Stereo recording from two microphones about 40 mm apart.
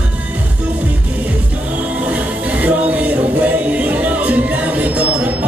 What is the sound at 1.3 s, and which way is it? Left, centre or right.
Music, right.